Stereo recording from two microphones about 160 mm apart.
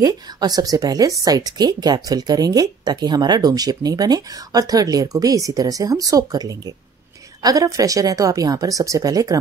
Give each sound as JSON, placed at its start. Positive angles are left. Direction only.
{"t": 0.0, "sound": "speech", "side_deg": -25}